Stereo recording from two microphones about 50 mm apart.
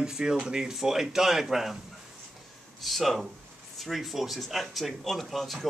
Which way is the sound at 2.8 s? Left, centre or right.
Centre.